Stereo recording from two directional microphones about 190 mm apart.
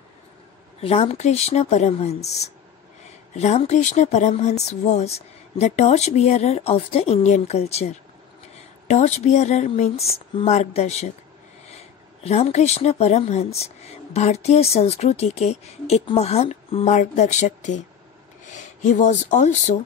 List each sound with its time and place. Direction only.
0.7 s speech: 30° left (ahead or behind)